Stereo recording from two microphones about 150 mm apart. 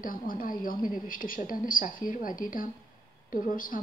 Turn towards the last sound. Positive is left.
turn(degrees=65)  # may be behind; listen again after turning